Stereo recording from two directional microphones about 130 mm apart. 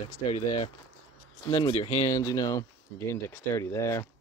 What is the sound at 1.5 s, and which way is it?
Speech, 50° left (ahead or behind).